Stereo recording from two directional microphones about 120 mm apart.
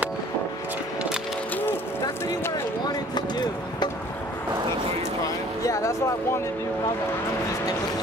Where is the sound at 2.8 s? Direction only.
35° left (ahead or behind).